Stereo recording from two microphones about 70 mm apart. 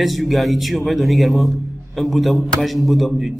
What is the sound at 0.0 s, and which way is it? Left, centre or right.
A man's voice, centre.